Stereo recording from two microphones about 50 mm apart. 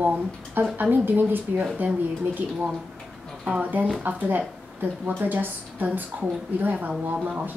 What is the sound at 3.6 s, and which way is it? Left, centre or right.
A woman's voice, right.